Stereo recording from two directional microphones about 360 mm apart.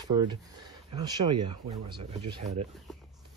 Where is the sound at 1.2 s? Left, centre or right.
Right.